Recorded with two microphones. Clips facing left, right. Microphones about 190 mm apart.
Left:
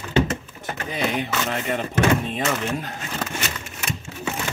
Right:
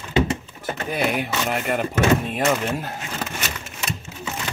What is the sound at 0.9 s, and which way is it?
Speech, 10° right (ahead or behind).